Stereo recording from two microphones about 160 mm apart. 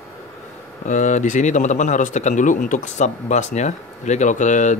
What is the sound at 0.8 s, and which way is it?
A man's voice, 50° left (ahead or behind).